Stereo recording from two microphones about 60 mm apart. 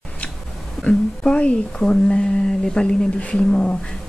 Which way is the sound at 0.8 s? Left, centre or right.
Centre.